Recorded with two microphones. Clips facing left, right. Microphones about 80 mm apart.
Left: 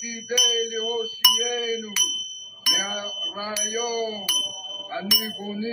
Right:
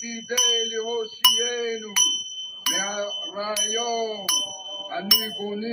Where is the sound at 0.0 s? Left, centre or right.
Centre.